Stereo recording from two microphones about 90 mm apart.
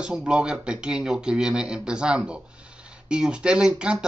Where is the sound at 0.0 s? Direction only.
10° right (ahead or behind).